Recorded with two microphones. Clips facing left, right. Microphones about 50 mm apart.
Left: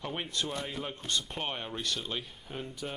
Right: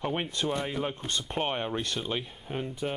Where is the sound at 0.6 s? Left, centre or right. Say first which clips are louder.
Right 5 dB; centre.